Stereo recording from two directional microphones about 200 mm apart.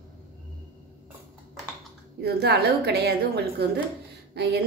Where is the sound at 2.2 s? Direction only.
55° right (ahead or behind).